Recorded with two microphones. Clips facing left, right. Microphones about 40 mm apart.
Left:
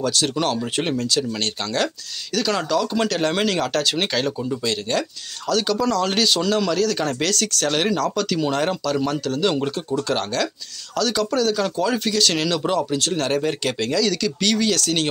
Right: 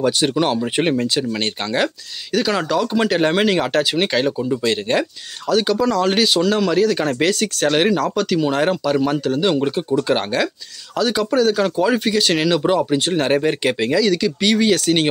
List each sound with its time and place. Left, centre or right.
0.0 s speech: right
5.5 s speech: centre